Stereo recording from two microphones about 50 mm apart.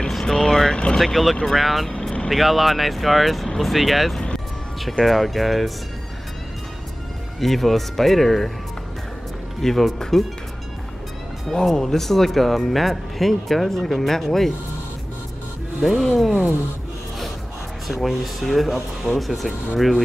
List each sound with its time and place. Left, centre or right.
0.1 s vehicle: centre
0.9 s speech: centre
1.9 s vehicle: centre
2.2 s speech: centre
7.3 s speech: centre
9.6 s speech: centre
11.5 s speech: centre
15.8 s speech: centre
17.8 s speech: centre